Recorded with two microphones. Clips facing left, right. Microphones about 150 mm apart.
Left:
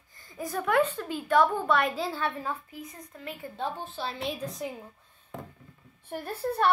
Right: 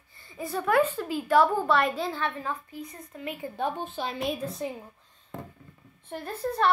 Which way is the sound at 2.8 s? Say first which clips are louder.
Right 5 dB; 5° right (ahead or behind).